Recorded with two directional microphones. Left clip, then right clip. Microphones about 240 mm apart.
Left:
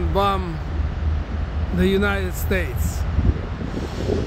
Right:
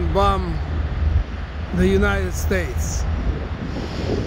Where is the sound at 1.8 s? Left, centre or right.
Centre.